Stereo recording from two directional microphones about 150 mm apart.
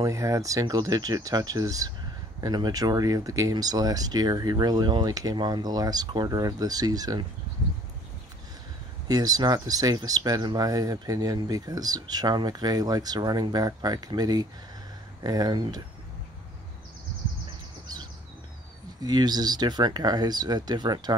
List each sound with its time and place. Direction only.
0.0 s speech: 20° right (ahead or behind)
9.0 s speech: 25° right (ahead or behind)
19.0 s speech: 25° right (ahead or behind)